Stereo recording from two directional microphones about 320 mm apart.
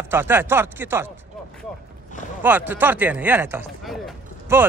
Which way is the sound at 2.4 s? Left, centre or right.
Centre.